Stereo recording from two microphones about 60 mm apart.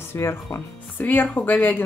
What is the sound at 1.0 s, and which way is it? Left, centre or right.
Speech, left.